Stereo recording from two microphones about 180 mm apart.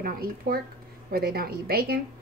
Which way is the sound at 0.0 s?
55° right (ahead or behind).